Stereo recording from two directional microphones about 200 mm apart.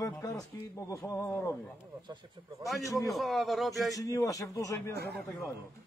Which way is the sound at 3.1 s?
Centre (ahead or behind).